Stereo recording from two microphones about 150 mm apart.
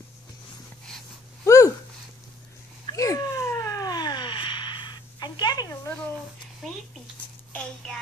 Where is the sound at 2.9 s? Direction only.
20° left (ahead or behind).